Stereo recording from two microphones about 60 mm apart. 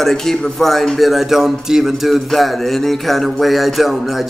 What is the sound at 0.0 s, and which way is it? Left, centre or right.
A man's voice, centre.